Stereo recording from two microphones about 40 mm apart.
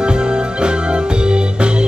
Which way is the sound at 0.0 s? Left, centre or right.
Right.